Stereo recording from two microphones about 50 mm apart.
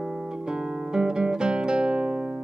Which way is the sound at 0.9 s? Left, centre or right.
Centre.